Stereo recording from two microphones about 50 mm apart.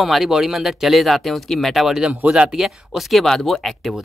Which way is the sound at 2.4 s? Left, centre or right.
Centre.